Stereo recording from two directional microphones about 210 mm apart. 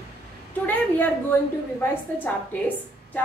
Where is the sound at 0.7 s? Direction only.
10° left (ahead or behind).